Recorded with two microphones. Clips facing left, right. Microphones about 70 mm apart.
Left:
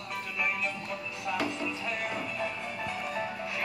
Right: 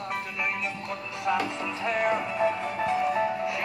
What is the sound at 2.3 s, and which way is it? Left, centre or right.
Music, right.